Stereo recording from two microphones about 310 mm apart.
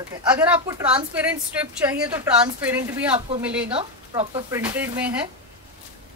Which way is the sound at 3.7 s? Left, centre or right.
Centre.